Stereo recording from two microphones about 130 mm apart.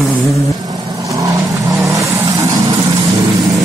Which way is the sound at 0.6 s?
25° right (ahead or behind).